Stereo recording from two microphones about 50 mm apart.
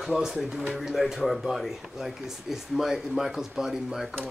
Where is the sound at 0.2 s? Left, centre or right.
Centre.